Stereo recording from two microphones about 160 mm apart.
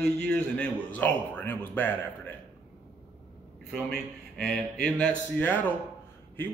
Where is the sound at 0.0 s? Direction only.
5° left (ahead or behind).